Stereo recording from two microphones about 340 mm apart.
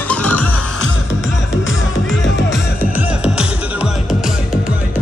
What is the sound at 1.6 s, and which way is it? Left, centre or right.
Music, left.